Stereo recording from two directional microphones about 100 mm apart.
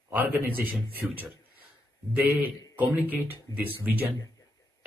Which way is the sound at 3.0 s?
20° right (ahead or behind).